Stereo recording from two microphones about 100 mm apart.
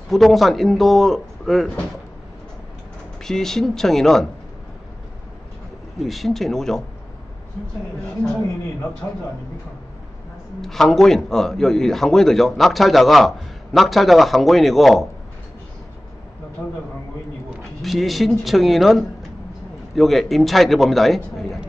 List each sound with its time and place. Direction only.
0.1 s a man's voice: centre (ahead or behind)
3.3 s a man's voice: 5° left (ahead or behind)
6.0 s a man's voice: centre (ahead or behind)
10.6 s a man's voice: 5° left (ahead or behind)
16.6 s a man's voice: 10° left (ahead or behind)
17.8 s a man's voice: centre (ahead or behind)